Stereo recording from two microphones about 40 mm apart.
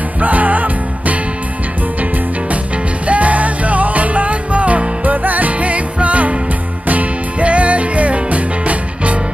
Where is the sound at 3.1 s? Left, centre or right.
Right.